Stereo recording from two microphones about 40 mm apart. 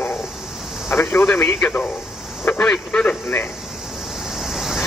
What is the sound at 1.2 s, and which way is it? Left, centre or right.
Speech, left.